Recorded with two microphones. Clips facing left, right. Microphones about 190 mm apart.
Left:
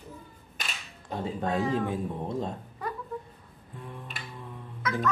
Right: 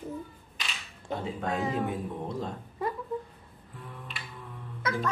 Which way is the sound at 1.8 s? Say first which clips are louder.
Left 2 dB; 25° left (ahead or behind).